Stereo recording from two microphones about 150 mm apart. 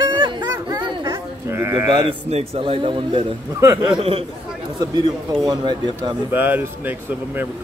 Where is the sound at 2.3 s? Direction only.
40° right (ahead or behind).